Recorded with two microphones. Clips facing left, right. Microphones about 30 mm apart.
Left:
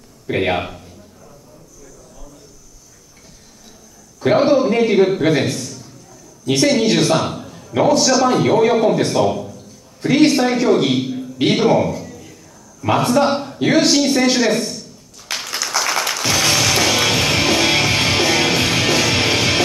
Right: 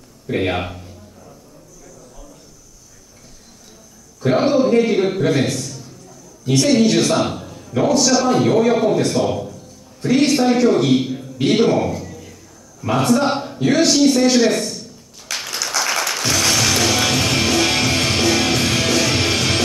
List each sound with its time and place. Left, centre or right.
0.3 s a man's voice: centre
0.6 s a man's voice: centre
4.4 s a man's voice: centre
6.4 s a woman's voice: centre
7.2 s a sound: centre
7.8 s a man's voice: centre
9.3 s a sound: centre
10.0 s a man's voice: centre
10.3 s a man's voice: centre
11.0 s a sound: centre
13.0 s a man's voice: centre
13.6 s a man's voice: centre
15.3 s a sound: left
15.7 s music: centre